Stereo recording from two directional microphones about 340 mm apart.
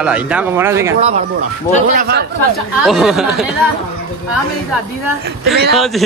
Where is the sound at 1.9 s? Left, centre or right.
Right.